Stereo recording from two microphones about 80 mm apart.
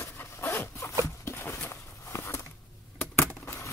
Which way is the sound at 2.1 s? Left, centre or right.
Left.